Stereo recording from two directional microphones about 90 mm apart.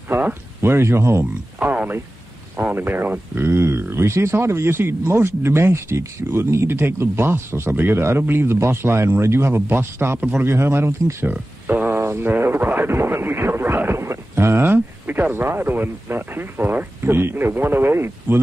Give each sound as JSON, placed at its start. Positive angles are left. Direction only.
{"t": 0.1, "sound": "speech", "side_deg": -25}
{"t": 1.6, "sound": "a sound", "side_deg": -20}
{"t": 2.5, "sound": "speech", "side_deg": -20}